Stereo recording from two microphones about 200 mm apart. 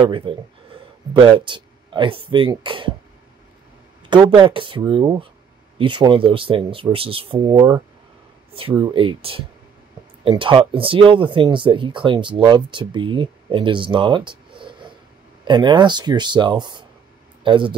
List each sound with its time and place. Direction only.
0.0 s speech: 25° right (ahead or behind)
4.1 s speech: 20° right (ahead or behind)